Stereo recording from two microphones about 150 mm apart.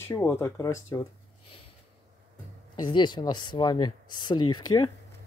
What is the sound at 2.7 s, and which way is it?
Speech, 30° left (ahead or behind).